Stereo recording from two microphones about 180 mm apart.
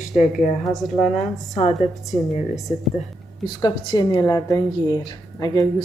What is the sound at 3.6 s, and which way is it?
A woman's voice, 25° left (ahead or behind).